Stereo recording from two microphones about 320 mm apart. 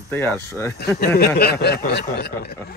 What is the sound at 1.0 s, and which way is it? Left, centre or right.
Speech, left.